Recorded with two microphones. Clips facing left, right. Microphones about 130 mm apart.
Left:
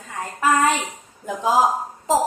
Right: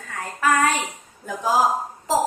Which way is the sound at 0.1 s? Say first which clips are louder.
Left 1 dB; 25° left (ahead or behind).